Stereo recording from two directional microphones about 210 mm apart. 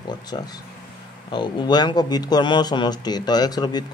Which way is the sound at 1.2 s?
20° left (ahead or behind).